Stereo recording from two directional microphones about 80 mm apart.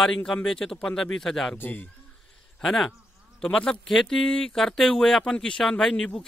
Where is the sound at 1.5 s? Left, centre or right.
Left.